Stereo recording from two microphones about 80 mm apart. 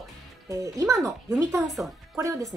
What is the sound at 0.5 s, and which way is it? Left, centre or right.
Speech, right.